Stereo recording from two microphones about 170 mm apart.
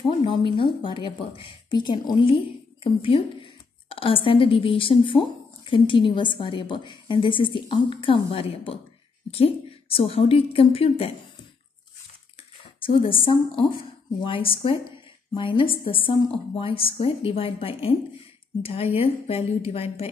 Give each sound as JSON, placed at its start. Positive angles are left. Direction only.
{"t": 0.2, "sound": "a woman's voice", "side_deg": 30}
{"t": 12.8, "sound": "a woman's voice", "side_deg": 30}